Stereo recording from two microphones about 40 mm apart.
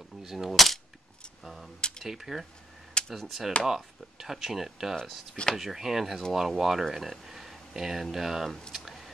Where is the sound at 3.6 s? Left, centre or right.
Centre.